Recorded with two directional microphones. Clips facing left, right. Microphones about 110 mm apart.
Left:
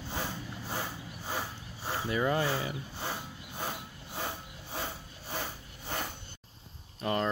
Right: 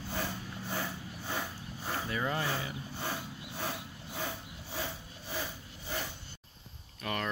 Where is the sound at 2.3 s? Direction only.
30° left (ahead or behind).